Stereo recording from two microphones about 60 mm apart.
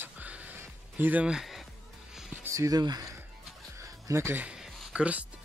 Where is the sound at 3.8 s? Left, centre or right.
Right.